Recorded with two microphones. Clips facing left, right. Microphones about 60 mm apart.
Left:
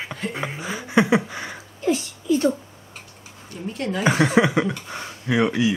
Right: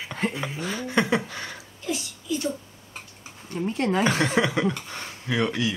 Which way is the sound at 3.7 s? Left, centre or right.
Right.